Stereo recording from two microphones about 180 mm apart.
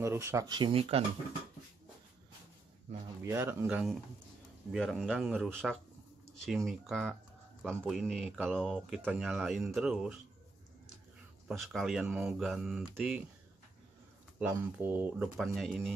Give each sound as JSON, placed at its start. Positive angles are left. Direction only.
{"t": 0.0, "sound": "speech", "side_deg": -15}
{"t": 3.3, "sound": "speech", "side_deg": -10}
{"t": 11.4, "sound": "speech", "side_deg": 0}
{"t": 14.4, "sound": "speech", "side_deg": -10}